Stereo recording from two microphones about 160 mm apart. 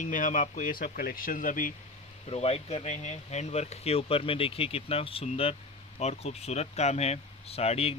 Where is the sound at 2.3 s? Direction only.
40° left (ahead or behind).